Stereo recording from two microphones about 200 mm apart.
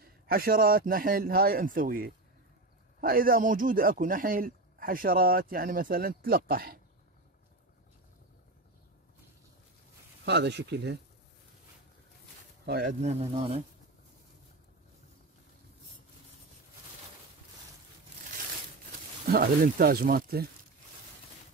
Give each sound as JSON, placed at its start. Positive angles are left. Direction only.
{"t": 0.0, "sound": "speech", "side_deg": -45}
{"t": 10.2, "sound": "speech", "side_deg": -60}
{"t": 12.6, "sound": "speech", "side_deg": -50}
{"t": 13.0, "sound": "speech", "side_deg": -30}
{"t": 19.2, "sound": "speech", "side_deg": -45}